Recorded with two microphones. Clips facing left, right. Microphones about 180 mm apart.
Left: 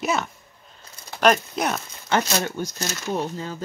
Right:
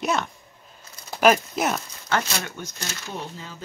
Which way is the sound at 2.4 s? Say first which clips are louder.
Left 7 dB; 35° left (ahead or behind).